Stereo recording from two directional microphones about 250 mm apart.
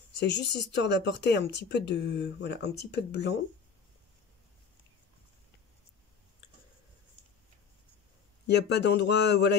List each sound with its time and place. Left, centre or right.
0.2 s speech: left
8.5 s speech: left